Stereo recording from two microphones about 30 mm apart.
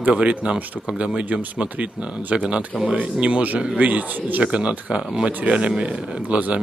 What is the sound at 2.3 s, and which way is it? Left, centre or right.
Speech, right.